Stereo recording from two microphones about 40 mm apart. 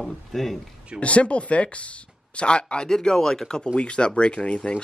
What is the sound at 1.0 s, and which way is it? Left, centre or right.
Speech, left.